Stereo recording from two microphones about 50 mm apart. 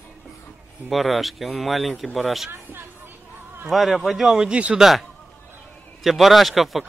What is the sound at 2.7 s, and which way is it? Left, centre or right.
Chatter, right.